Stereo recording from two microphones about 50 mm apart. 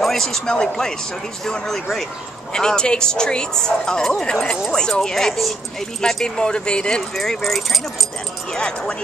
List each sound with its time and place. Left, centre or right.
0.0 s a woman's voice: centre
7.2 s speech: centre
8.5 s a woman's voice: centre